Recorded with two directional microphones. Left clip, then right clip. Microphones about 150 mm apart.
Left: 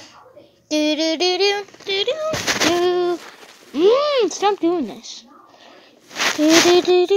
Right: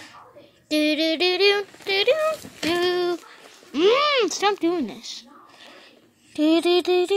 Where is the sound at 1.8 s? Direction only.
35° right (ahead or behind).